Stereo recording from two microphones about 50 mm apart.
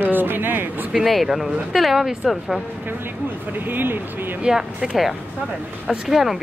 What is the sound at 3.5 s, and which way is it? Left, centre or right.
Speech, right.